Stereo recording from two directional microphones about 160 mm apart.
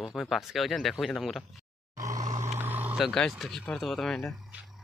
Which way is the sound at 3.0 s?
5° left (ahead or behind).